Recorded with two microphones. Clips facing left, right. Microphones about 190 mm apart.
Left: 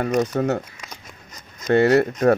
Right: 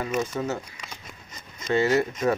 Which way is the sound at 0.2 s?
65° left (ahead or behind).